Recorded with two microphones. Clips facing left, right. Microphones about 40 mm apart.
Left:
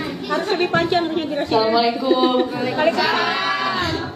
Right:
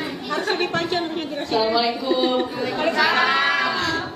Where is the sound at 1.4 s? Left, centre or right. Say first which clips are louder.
Left 3 dB; centre.